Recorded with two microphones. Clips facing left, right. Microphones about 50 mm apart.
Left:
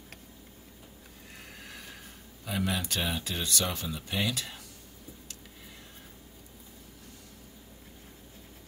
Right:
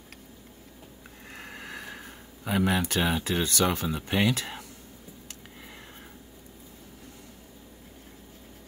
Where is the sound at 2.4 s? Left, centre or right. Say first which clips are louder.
Right 6 dB; right.